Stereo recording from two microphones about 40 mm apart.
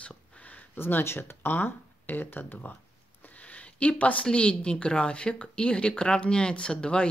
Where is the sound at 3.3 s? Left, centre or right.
Left.